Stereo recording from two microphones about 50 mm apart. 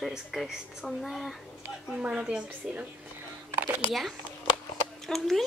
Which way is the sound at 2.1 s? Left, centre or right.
Centre.